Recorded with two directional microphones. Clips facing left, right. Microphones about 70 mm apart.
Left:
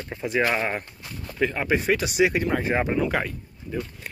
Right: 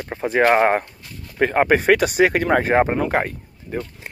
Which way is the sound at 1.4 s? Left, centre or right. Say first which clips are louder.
Right 5 dB; right.